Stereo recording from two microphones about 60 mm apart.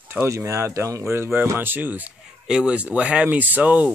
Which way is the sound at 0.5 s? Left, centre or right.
Right.